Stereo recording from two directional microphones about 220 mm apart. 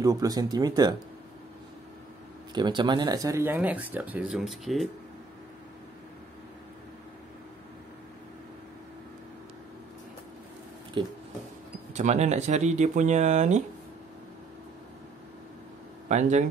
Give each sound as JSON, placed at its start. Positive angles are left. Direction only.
{"t": 0.0, "sound": "speech", "side_deg": -15}
{"t": 2.5, "sound": "speech", "side_deg": -20}
{"t": 11.0, "sound": "speech", "side_deg": -20}
{"t": 16.1, "sound": "speech", "side_deg": -30}